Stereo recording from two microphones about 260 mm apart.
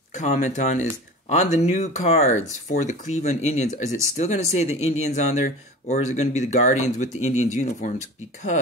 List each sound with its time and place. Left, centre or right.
0.1 s speech: left